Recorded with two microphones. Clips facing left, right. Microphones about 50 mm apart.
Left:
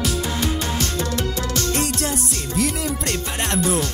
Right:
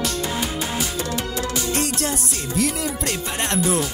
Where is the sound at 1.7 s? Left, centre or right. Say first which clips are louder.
Even; centre.